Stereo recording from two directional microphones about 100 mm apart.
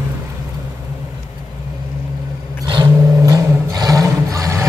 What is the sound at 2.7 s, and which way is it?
Vehicle, 50° right (ahead or behind).